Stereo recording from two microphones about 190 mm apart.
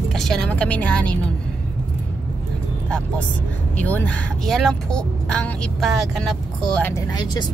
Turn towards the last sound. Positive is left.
turn(degrees=20)  # may be behind; listen again after turning